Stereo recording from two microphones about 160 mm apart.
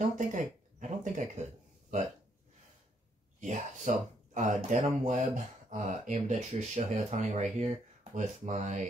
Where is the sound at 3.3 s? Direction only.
50° right (ahead or behind).